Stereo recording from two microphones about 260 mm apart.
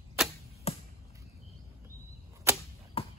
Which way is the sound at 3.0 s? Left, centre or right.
Left.